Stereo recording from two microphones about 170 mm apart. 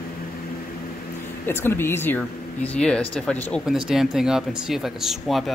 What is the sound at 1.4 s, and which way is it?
Speech, 15° left (ahead or behind).